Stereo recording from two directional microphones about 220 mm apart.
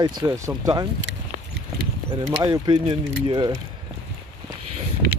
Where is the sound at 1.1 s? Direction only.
55° right (ahead or behind).